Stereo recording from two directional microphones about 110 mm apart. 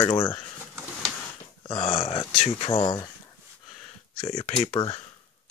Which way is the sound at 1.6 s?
55° left (ahead or behind).